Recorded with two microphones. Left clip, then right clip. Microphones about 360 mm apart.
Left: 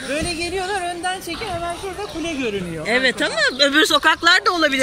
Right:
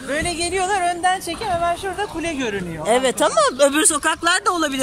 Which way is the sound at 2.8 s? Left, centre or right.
Centre.